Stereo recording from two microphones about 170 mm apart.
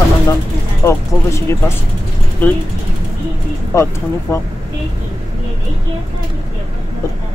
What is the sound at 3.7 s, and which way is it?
Speech, 20° left (ahead or behind).